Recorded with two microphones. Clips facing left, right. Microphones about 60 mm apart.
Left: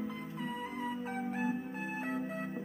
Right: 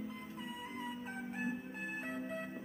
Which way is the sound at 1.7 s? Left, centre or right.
Left.